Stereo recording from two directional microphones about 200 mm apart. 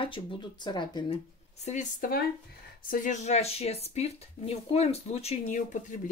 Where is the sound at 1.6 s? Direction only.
35° left (ahead or behind).